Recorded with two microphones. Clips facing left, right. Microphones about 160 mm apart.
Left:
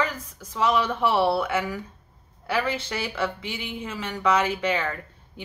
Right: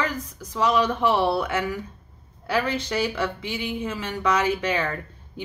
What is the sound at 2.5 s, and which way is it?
Speech, 15° right (ahead or behind).